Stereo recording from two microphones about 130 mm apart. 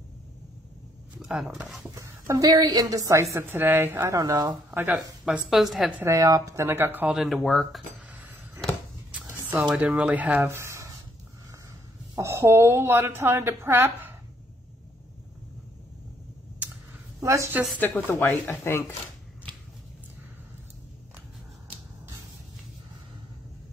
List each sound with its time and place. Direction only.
1.2 s speech: centre (ahead or behind)
2.0 s a woman's voice: 25° right (ahead or behind)
4.2 s speech: 30° right (ahead or behind)
4.6 s speech: 15° right (ahead or behind)
4.9 s a woman's voice: 5° right (ahead or behind)
6.1 s a woman's voice: 25° right (ahead or behind)
7.2 s a woman's voice: centre (ahead or behind)
9.3 s speech: 20° right (ahead or behind)
12.2 s a woman's voice: 20° right (ahead or behind)
17.2 s a woman's voice: 20° right (ahead or behind)
17.7 s speech: 15° left (ahead or behind)